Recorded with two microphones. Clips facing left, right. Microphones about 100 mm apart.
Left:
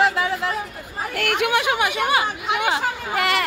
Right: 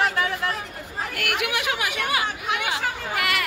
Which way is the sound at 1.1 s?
35° left (ahead or behind).